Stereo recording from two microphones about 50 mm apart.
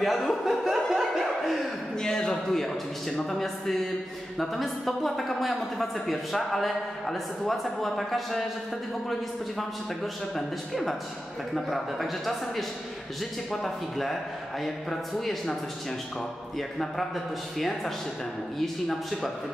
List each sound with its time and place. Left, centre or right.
0.0 s chuckle: centre
2.0 s a sound: centre
3.3 s a woman's voice: centre
10.3 s a woman's voice: centre
17.6 s a woman's voice: centre